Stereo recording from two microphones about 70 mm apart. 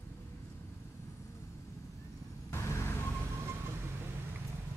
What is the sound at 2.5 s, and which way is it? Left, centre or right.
Vehicle, left.